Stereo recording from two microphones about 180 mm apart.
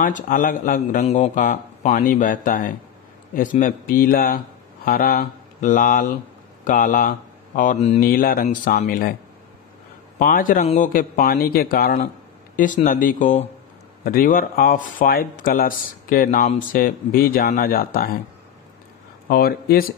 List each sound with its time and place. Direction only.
0.0 s speech: 50° left (ahead or behind)
8.0 s speech: 55° left (ahead or behind)
10.1 s a man's voice: 50° left (ahead or behind)
10.6 s speech: 35° left (ahead or behind)
10.9 s speech: 50° left (ahead or behind)
19.2 s speech: 55° left (ahead or behind)